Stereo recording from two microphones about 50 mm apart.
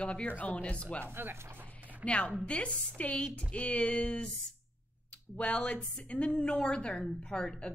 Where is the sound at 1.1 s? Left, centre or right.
Right.